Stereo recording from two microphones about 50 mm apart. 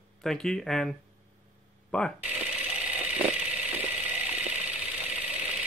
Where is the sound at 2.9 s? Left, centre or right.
Right.